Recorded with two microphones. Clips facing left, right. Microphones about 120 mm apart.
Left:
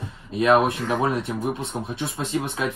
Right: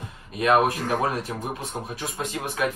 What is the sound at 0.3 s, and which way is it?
Speech, 30° left (ahead or behind).